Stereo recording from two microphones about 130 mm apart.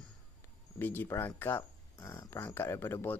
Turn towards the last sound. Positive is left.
turn(degrees=20)  # may be behind; listen again after turning